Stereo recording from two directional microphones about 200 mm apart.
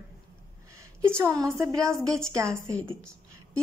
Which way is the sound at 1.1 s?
15° right (ahead or behind).